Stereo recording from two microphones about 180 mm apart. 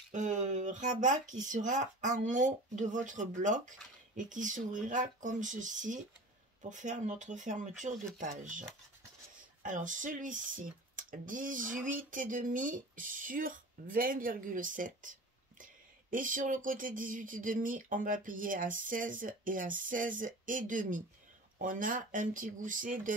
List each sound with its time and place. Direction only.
0.1 s speech: 45° right (ahead or behind)